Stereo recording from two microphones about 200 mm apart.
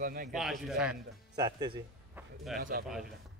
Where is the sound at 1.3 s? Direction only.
20° right (ahead or behind).